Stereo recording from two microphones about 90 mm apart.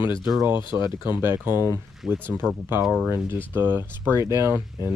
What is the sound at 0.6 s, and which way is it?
Speech, 60° left (ahead or behind).